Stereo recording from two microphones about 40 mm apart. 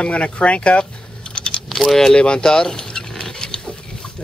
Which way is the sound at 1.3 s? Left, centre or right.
Left.